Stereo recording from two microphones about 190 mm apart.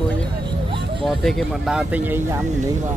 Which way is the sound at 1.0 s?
Centre (ahead or behind).